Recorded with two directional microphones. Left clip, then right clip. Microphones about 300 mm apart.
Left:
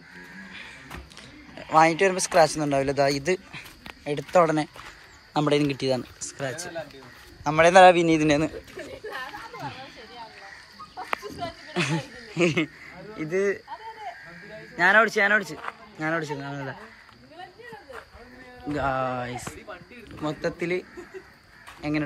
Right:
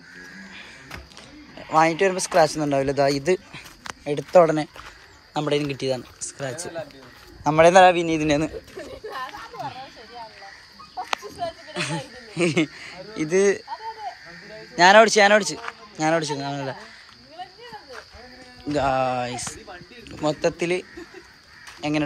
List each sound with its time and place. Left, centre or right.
1.6 s speech: centre
6.5 s speech: right
8.7 s a sound: right
11.2 s a sound: centre
11.7 s a sound: centre
14.8 s speech: centre
18.7 s music: centre
20.1 s a man's voice: centre
21.8 s speech: centre